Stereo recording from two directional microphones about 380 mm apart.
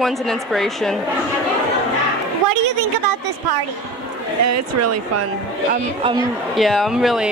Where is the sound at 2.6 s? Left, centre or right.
Right.